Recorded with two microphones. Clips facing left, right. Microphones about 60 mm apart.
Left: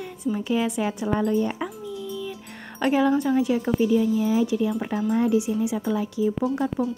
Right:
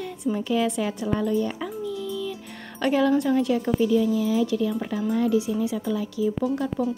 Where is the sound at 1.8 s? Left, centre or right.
Centre.